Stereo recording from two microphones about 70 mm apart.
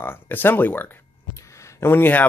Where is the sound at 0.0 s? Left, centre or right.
Left.